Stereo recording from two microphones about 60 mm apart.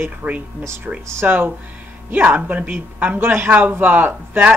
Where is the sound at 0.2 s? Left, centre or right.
Right.